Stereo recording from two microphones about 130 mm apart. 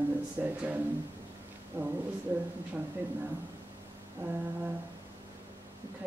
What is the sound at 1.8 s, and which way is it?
Speech, 15° right (ahead or behind).